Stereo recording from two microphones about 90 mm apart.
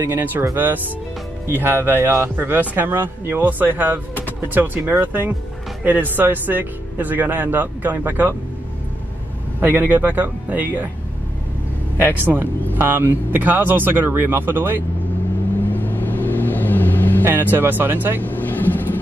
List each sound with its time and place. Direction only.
0.0 s speech: 20° right (ahead or behind)
1.5 s speech: 25° right (ahead or behind)
9.6 s speech: 20° right (ahead or behind)
12.4 s speech: 25° right (ahead or behind)
15.7 s vehicle: 20° left (ahead or behind)
17.2 s speech: 25° right (ahead or behind)
18.2 s vehicle: 20° left (ahead or behind)